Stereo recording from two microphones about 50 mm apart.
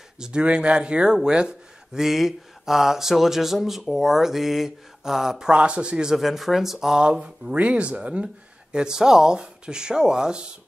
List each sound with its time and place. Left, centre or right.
0.2 s speech: right
2.0 s speech: centre
5.5 s speech: right
6.1 s speech: centre
7.0 s speech: centre
8.7 s speech: centre